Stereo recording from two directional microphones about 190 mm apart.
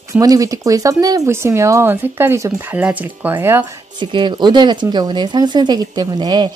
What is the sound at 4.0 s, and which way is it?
Speech, 25° right (ahead or behind).